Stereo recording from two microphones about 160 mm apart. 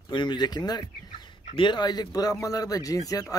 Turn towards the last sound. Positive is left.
turn(degrees=20)  # may be behind; listen again after turning